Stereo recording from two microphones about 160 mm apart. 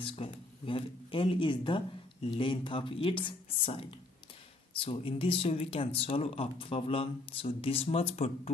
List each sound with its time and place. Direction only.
0.0 s speech: 35° left (ahead or behind)